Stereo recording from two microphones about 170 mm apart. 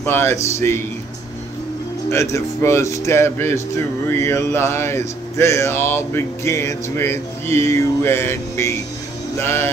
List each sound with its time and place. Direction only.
0.0 s speech: 15° left (ahead or behind)
2.0 s speech: 15° left (ahead or behind)